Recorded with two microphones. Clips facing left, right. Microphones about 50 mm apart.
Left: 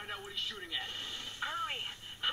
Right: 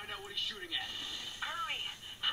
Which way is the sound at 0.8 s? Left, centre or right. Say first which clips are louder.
Left 1 dB; left.